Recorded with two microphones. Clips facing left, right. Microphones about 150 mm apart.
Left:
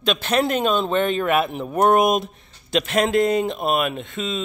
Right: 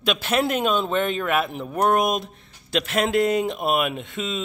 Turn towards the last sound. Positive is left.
turn(degrees=-5)  # may be behind; listen again after turning